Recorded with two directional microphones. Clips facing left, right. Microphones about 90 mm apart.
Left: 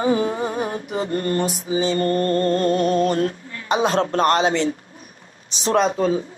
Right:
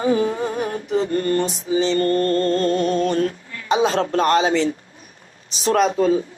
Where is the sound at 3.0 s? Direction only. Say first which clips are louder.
Even; 35° left (ahead or behind).